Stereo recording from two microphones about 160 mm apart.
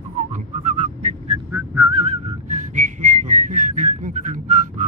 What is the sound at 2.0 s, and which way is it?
Whistling, 40° right (ahead or behind).